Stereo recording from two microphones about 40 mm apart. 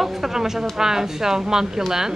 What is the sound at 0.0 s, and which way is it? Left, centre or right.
Speech, centre.